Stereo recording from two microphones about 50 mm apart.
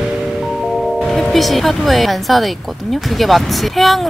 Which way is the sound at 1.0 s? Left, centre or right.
Centre.